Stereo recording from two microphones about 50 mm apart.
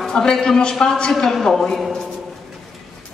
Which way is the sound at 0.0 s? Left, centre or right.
Centre.